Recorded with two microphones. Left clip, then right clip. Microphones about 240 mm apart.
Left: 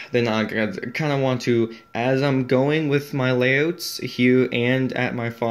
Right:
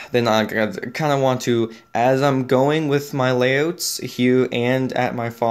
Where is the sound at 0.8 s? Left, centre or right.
Centre.